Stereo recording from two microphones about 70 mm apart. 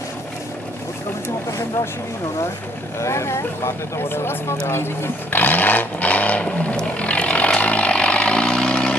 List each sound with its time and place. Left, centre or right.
3.0 s speech: left
5.3 s vehicle: left